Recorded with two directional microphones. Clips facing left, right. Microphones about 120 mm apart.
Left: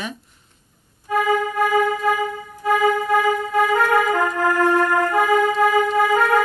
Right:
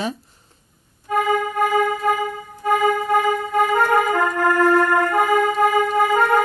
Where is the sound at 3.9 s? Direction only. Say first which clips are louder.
Even; 20° right (ahead or behind).